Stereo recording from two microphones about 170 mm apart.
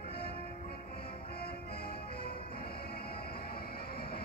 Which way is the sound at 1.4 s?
65° left (ahead or behind).